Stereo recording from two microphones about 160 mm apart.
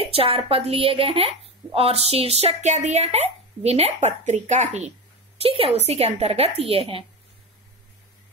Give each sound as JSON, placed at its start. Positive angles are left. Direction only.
{"t": 0.0, "sound": "speech", "side_deg": -35}